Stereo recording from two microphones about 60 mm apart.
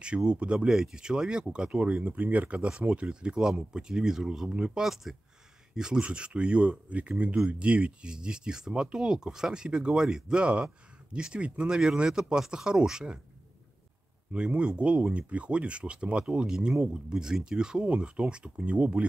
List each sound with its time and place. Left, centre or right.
0.0 s speech: centre
14.3 s speech: centre